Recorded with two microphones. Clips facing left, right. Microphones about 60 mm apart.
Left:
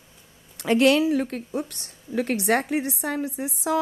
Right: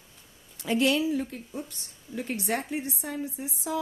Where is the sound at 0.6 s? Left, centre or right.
Left.